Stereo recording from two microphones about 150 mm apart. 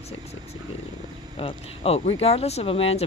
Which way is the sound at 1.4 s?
40° left (ahead or behind).